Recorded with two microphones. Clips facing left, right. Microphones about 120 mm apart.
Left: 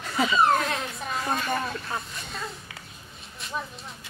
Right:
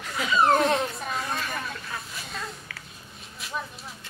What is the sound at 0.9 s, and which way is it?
Speech, centre (ahead or behind).